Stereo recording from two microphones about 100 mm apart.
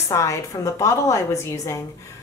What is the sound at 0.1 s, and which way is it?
Speech, 30° left (ahead or behind).